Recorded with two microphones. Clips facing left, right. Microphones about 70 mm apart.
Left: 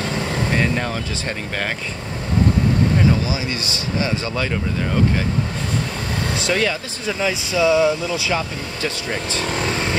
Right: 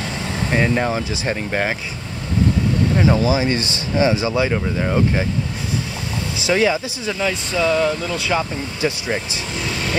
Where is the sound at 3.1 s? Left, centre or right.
Right.